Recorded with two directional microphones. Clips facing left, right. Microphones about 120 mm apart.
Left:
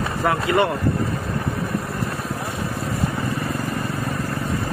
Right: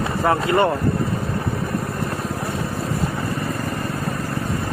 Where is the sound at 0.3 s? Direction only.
35° right (ahead or behind).